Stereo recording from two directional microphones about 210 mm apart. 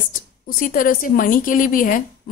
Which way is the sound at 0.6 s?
40° left (ahead or behind).